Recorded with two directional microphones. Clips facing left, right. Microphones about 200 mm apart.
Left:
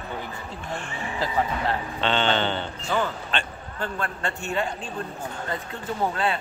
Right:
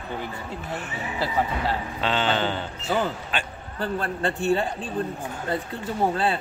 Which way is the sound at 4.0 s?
35° right (ahead or behind).